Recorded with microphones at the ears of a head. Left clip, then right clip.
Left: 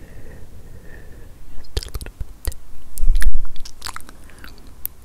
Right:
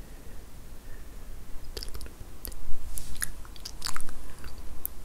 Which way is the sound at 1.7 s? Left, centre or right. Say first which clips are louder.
Left 10 dB; left.